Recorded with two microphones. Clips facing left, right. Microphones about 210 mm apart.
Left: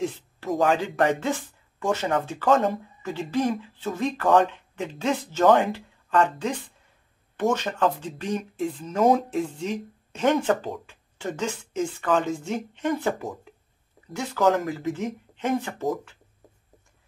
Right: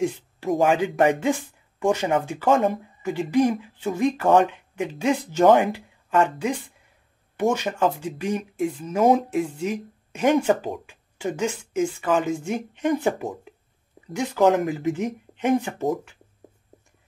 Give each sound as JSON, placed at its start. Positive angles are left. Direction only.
{"t": 0.5, "sound": "speech", "side_deg": -20}
{"t": 7.5, "sound": "speech", "side_deg": -10}
{"t": 10.5, "sound": "speech", "side_deg": -25}
{"t": 10.9, "sound": "speech", "side_deg": -10}